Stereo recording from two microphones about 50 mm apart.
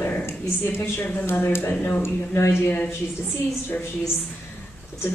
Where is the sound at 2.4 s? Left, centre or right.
Left.